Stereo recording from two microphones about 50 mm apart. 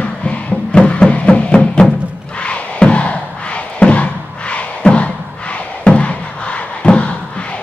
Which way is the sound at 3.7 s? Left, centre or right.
Left.